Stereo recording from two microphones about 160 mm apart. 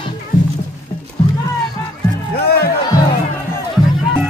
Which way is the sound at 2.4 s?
80° left.